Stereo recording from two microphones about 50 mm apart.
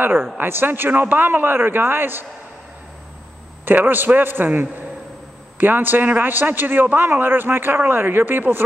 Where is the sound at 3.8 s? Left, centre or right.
Right.